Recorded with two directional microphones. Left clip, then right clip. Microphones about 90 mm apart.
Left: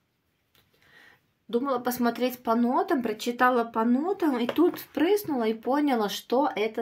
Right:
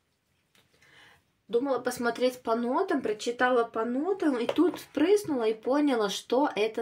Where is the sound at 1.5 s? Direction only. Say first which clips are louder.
Left 1 dB; 35° left (ahead or behind).